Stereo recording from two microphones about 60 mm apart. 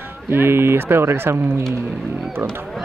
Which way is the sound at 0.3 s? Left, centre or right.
Right.